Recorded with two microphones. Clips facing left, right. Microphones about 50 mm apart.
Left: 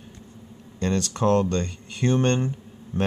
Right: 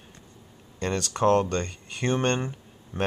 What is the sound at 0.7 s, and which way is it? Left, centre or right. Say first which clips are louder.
Speech: left 2 dB; centre.